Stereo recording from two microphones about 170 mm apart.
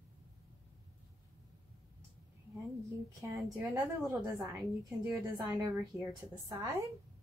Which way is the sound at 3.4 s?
Centre (ahead or behind).